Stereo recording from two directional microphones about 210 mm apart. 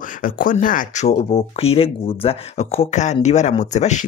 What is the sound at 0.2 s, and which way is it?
Speech, 40° left (ahead or behind).